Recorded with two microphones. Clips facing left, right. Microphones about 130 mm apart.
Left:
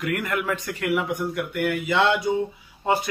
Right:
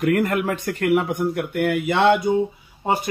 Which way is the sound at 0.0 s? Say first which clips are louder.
Right 6 dB; 40° right (ahead or behind).